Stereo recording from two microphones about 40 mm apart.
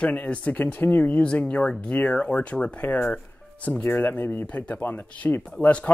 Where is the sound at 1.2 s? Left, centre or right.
Left.